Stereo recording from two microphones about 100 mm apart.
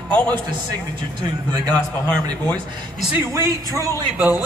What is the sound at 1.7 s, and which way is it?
Speech, 10° left (ahead or behind).